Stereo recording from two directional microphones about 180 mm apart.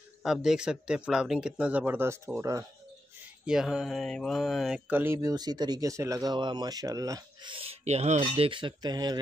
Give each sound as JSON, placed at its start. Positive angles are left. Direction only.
{"t": 0.2, "sound": "speech", "side_deg": 0}
{"t": 3.4, "sound": "mantra", "side_deg": 0}